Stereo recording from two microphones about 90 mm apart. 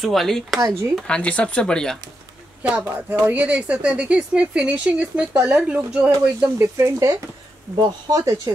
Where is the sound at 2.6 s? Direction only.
15° right (ahead or behind).